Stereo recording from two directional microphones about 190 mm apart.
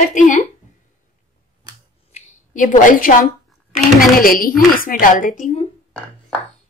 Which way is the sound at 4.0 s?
50° left (ahead or behind).